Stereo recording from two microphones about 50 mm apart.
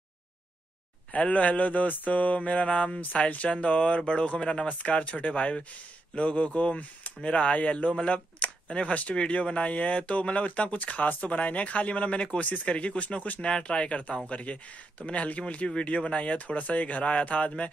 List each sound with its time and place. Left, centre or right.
1.1 s speech: left